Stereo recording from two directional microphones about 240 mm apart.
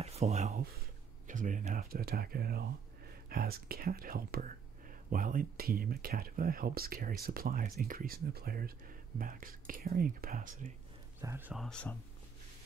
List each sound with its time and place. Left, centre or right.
0.0 s speech: right
11.1 s speech: centre